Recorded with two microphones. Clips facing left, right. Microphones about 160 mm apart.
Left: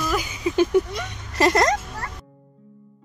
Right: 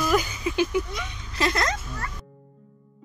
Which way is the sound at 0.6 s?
45° left (ahead or behind).